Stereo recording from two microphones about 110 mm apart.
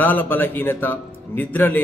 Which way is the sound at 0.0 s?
15° left (ahead or behind).